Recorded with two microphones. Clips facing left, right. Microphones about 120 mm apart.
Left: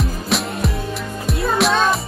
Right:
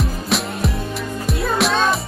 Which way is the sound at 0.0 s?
Centre (ahead or behind).